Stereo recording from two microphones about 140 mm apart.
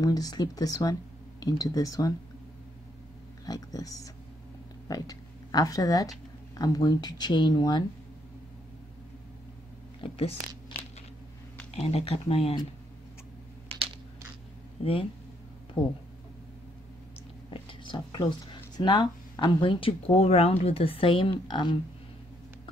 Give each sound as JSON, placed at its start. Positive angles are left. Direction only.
{"t": 0.0, "sound": "speech", "side_deg": 25}
{"t": 3.4, "sound": "speech", "side_deg": 25}
{"t": 10.0, "sound": "speech", "side_deg": 40}
{"t": 11.7, "sound": "speech", "side_deg": 45}
{"t": 13.7, "sound": "coin", "side_deg": -45}
{"t": 15.8, "sound": "speech", "side_deg": 5}
{"t": 17.5, "sound": "speech", "side_deg": 35}